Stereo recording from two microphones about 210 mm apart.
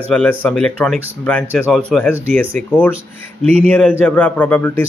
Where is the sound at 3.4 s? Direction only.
30° right (ahead or behind).